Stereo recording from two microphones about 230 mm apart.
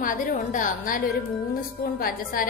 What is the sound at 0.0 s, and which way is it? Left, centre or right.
A woman's voice, left.